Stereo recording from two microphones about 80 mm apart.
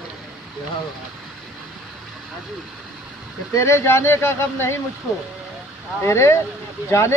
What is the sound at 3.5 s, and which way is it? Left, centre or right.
Speech, left.